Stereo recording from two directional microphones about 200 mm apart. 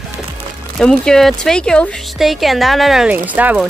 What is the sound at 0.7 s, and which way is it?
Speech, 5° left (ahead or behind).